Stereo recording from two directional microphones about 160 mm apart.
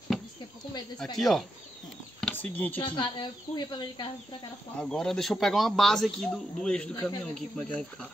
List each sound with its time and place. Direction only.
1.1 s speech: centre (ahead or behind)
2.1 s a sound: 5° left (ahead or behind)
2.8 s speech: 30° left (ahead or behind)
4.7 s speech: 5° left (ahead or behind)